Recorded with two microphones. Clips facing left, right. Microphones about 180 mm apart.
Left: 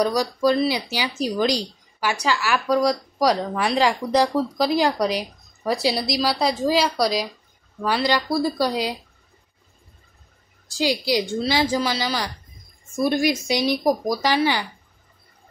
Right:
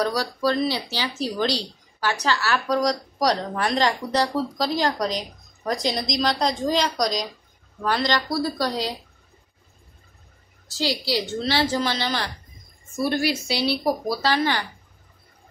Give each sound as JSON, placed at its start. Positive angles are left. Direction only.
{"t": 0.0, "sound": "speech", "side_deg": 15}
{"t": 10.7, "sound": "speech", "side_deg": 15}